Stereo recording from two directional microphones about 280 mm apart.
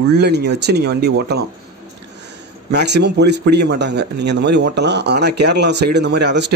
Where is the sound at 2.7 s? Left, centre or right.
Right.